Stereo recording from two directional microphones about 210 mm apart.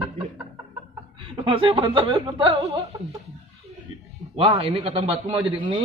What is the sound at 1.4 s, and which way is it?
A man's voice, 25° right (ahead or behind).